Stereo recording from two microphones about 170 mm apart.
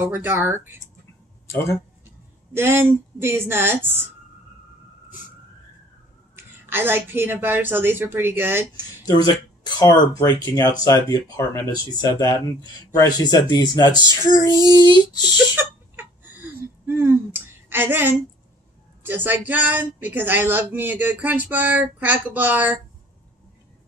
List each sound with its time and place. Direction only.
0.0 s speech: 10° right (ahead or behind)
1.5 s speech: 15° left (ahead or behind)
2.5 s speech: 15° right (ahead or behind)
6.3 s speech: 15° right (ahead or behind)
9.0 s speech: 25° left (ahead or behind)
15.3 s a sound: 10° right (ahead or behind)
19.0 s speech: 10° right (ahead or behind)